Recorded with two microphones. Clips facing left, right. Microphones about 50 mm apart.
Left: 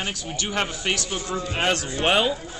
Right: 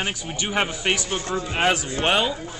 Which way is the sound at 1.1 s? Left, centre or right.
Right.